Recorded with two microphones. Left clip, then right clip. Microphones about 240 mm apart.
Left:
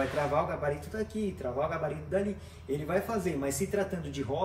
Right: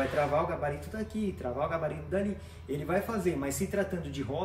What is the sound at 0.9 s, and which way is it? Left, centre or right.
A man's voice, centre.